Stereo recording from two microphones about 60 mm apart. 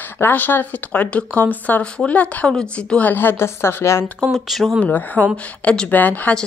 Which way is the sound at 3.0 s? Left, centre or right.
Left.